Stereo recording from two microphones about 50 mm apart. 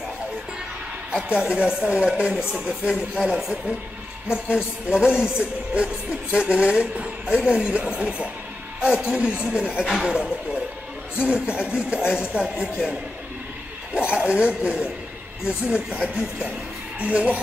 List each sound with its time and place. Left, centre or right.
1.1 s speech: centre
4.3 s speech: right
14.2 s speech: right
17.0 s speech: right